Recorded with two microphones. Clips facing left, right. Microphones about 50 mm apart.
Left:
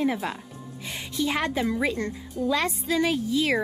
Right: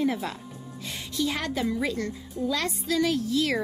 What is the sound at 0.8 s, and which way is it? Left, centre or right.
A child's voice, left.